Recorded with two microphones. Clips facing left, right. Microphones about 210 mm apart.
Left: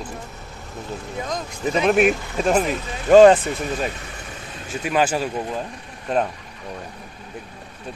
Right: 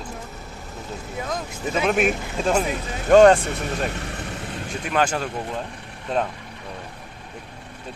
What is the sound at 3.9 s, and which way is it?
Vehicle, 70° right (ahead or behind).